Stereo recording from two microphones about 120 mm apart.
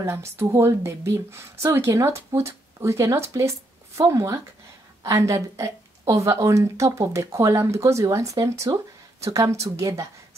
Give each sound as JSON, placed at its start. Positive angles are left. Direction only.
{"t": 0.0, "sound": "speech", "side_deg": -20}